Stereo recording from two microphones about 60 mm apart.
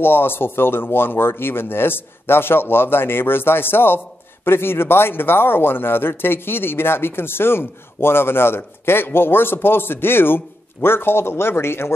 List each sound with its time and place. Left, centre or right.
0.0 s speech: left